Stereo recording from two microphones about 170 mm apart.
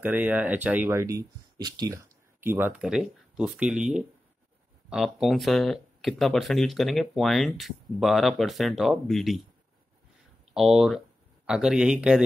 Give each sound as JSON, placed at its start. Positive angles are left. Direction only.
{"t": 0.0, "sound": "speech", "side_deg": -10}
{"t": 10.5, "sound": "speech", "side_deg": 0}